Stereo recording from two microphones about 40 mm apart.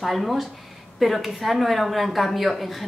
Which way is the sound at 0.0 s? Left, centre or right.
Centre.